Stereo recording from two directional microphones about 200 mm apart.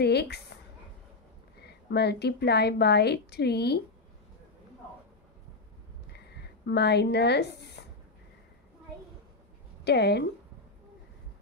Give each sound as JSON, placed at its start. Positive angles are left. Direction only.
{"t": 0.0, "sound": "a woman's voice", "side_deg": 55}
{"t": 1.6, "sound": "a woman's voice", "side_deg": 55}
{"t": 6.1, "sound": "a sound", "side_deg": 55}
{"t": 9.8, "sound": "a woman's voice", "side_deg": 55}